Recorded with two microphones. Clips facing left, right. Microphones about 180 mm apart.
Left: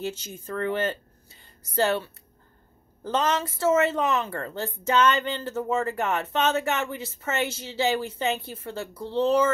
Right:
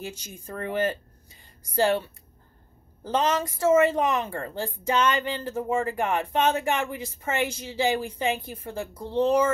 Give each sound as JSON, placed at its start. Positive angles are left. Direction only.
{"t": 0.0, "sound": "a woman's voice", "side_deg": -10}